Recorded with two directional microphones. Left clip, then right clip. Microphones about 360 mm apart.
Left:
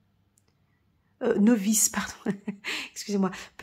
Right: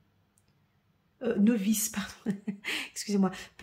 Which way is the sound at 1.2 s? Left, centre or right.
Centre.